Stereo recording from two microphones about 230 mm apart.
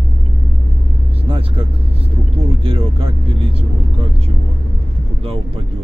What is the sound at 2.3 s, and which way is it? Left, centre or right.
Vehicle, right.